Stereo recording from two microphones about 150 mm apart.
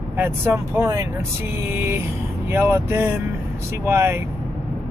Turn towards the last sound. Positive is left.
turn(degrees=-15)  # may be behind; listen again after turning